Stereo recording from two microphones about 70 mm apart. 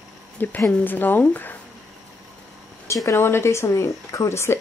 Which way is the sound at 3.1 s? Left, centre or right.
Left.